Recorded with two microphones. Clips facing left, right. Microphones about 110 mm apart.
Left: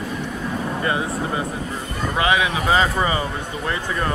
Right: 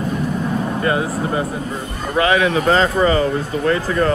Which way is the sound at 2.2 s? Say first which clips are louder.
Right 5 dB; 15° left (ahead or behind).